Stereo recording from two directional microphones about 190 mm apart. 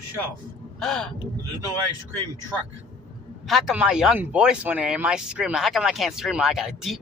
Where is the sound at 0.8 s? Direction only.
Centre (ahead or behind).